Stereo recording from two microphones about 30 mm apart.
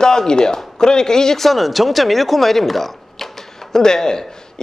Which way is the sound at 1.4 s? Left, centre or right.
Centre.